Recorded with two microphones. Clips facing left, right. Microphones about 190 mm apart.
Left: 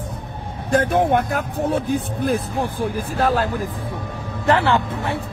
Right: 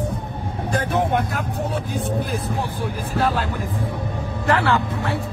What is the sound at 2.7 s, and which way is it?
Speech, 45° left (ahead or behind).